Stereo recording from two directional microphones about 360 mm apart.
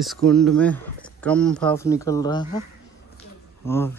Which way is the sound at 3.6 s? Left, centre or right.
Centre.